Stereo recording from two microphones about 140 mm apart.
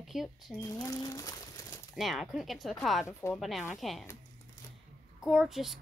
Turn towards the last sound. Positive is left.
turn(degrees=0)  # may be behind; listen again after turning